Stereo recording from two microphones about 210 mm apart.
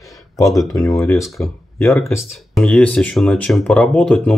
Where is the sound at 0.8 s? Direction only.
15° left (ahead or behind).